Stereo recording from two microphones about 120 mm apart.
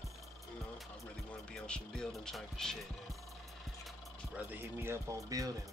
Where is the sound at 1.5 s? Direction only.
5° left (ahead or behind).